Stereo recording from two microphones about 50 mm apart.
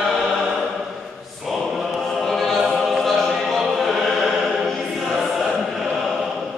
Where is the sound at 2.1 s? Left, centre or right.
Centre.